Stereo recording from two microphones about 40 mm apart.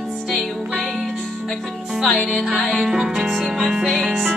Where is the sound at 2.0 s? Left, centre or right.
Centre.